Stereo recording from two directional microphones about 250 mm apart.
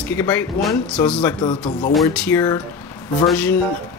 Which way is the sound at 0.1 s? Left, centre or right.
Centre.